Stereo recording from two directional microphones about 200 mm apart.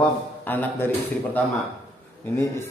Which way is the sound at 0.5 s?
10° left (ahead or behind).